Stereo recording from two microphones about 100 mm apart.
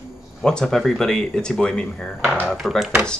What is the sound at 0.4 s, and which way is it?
Speech, 5° left (ahead or behind).